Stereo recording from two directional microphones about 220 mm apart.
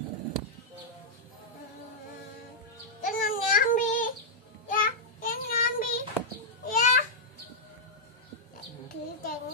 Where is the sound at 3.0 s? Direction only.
40° left (ahead or behind).